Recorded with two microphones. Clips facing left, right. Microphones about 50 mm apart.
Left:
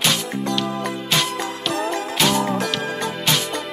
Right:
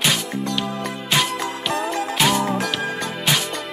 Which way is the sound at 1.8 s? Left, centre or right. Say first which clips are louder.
Even; centre.